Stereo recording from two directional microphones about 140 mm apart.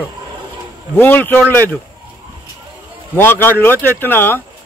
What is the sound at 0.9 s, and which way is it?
Speech, 15° left (ahead or behind).